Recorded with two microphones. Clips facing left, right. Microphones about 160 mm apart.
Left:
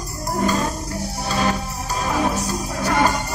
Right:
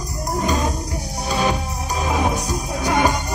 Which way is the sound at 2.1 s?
15° right (ahead or behind).